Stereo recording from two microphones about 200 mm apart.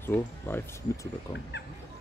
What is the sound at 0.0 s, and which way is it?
Speech, 10° left (ahead or behind).